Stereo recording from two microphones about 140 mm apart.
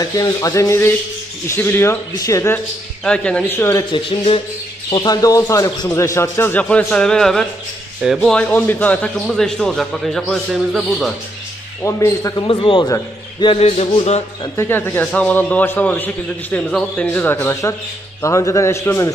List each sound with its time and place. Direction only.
0.0 s speech: 25° left (ahead or behind)
3.0 s a man's voice: 10° left (ahead or behind)
3.9 s speech: 40° left (ahead or behind)
4.8 s a man's voice: 30° left (ahead or behind); by 11.1 s centre (ahead or behind)
11.8 s speech: 20° left (ahead or behind)
12.4 s speech: 35° left (ahead or behind)
13.4 s a sound: 40° left (ahead or behind)
14.6 s a man's voice: 15° left (ahead or behind)